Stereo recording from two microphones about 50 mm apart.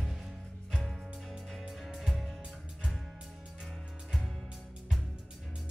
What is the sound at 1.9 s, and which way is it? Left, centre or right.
Music, centre.